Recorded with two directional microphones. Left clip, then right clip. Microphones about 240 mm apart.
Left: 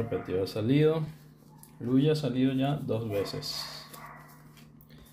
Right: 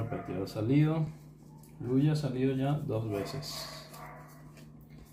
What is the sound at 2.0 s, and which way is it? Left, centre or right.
Speech, centre.